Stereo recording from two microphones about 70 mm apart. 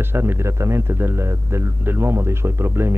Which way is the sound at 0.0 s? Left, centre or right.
Right.